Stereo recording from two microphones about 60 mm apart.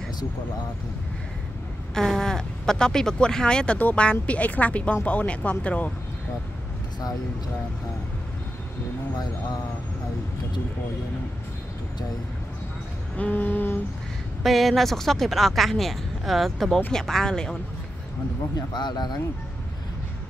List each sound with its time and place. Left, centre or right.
2.0 s speech: centre; by 5.9 s left
13.2 s a sound: left
14.4 s speech: centre